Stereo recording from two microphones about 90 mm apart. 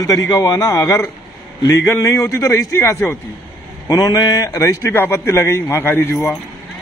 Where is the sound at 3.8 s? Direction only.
45° left (ahead or behind); by 6.3 s 25° left (ahead or behind).